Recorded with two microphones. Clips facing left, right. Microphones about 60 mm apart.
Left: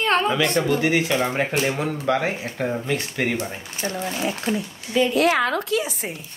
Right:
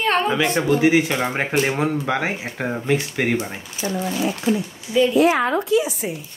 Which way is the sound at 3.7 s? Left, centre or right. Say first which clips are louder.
Right 3 dB; left.